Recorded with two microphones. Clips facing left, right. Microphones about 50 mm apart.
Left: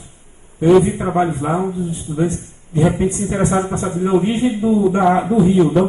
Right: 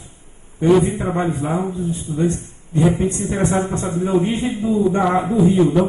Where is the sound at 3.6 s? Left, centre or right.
Left.